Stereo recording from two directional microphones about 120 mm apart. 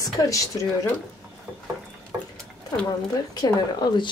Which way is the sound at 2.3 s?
10° left (ahead or behind).